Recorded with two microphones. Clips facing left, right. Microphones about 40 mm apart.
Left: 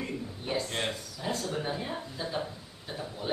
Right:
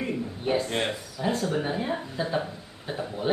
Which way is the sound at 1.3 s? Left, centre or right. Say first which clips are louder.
Right 5 dB; right.